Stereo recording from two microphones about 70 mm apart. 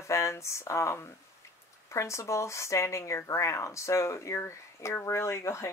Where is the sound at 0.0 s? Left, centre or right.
Left.